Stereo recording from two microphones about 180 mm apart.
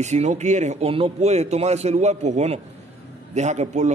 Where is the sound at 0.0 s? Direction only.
40° right (ahead or behind).